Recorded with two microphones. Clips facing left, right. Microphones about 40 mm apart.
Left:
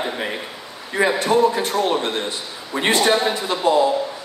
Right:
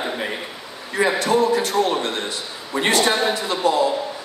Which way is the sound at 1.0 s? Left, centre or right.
Left.